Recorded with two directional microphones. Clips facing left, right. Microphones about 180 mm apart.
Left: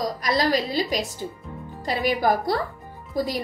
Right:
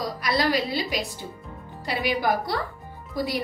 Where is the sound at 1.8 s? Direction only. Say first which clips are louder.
Left 3 dB; 45° left (ahead or behind).